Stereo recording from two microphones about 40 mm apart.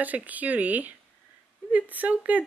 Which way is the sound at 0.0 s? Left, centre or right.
Right.